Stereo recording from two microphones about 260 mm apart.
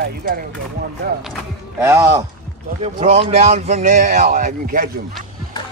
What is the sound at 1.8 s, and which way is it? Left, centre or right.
Speech, centre.